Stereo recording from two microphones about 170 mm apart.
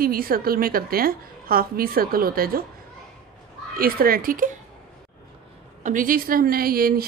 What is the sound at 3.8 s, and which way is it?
Speech, 60° right (ahead or behind).